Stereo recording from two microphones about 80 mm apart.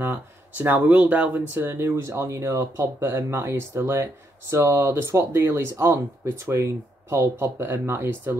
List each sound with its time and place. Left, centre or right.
0.0 s speech: right